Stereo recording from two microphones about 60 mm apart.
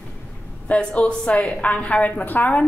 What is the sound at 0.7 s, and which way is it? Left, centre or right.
A woman's voice, left.